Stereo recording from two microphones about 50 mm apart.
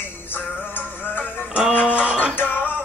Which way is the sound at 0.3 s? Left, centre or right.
Left.